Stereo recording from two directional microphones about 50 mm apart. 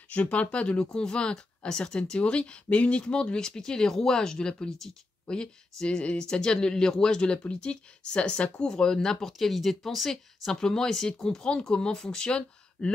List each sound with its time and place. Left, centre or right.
0.1 s speech: left